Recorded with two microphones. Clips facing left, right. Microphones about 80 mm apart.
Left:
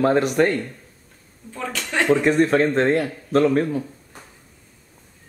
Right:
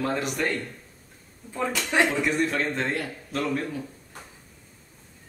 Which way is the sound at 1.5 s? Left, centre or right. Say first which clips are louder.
Right 1 dB; centre.